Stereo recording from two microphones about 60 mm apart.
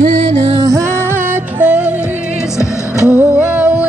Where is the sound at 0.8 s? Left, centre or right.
Right; by 2.5 s centre.